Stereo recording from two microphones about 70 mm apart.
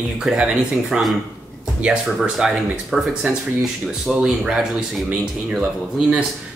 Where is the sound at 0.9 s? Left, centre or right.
Centre.